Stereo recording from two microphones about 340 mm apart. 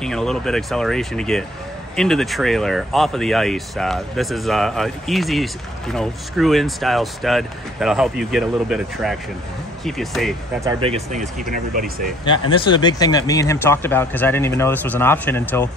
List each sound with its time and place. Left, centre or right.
0.0 s speech: centre
10.7 s speech: centre
12.3 s speech: centre